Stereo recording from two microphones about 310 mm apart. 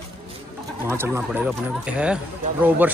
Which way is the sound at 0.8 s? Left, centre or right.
Centre.